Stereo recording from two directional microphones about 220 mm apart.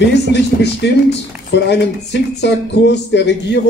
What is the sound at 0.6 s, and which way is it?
A man's voice, 50° left (ahead or behind).